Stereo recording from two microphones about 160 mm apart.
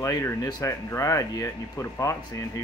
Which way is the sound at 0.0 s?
20° left (ahead or behind).